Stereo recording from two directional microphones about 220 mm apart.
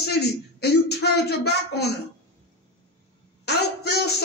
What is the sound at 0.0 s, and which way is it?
Speech, 45° left (ahead or behind).